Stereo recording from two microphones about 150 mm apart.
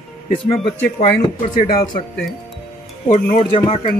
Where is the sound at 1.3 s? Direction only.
80° left.